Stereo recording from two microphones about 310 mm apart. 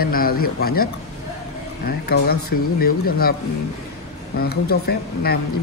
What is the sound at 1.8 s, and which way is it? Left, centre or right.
Speech, left.